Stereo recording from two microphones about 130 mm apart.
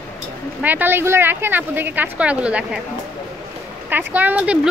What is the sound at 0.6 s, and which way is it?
Speech, 15° right (ahead or behind).